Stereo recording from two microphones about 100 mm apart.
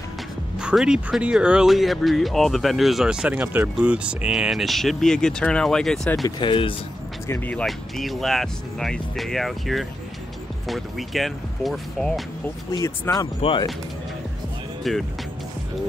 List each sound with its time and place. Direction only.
0.6 s speech: 10° right (ahead or behind)
6.4 s speech: 60° left (ahead or behind)
7.2 s speech: 25° left (ahead or behind)
7.6 s speech: centre (ahead or behind)
13.1 s speech: 25° left (ahead or behind)
13.4 s speech: 60° left (ahead or behind)
14.8 s speech: centre (ahead or behind)